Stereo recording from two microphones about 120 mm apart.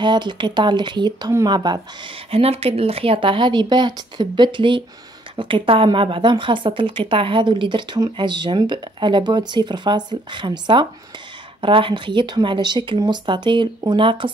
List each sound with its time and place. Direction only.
0.0 s a woman's voice: 40° right (ahead or behind)
2.3 s a woman's voice: 55° right (ahead or behind)